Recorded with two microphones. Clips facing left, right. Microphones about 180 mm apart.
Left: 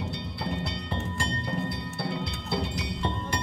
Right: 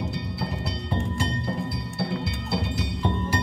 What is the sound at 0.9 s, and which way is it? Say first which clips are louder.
Music: right 6 dB; centre (ahead or behind).